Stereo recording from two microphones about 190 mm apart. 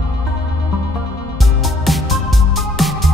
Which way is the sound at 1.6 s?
Centre (ahead or behind).